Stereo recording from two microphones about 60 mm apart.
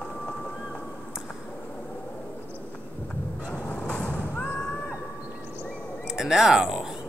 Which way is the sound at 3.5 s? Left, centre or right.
Left.